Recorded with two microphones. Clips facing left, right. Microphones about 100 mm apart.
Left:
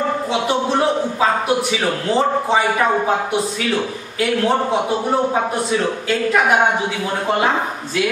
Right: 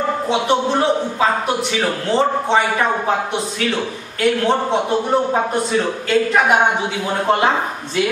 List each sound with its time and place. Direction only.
2.0 s a man's voice: 5° left (ahead or behind)
4.2 s a man's voice: 5° left (ahead or behind)